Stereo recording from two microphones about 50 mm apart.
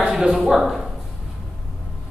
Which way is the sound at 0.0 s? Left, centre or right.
Centre.